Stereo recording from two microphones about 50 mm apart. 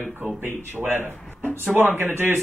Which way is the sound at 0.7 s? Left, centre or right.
Right.